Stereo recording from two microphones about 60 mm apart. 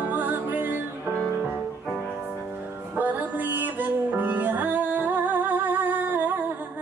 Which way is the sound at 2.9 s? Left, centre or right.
Right.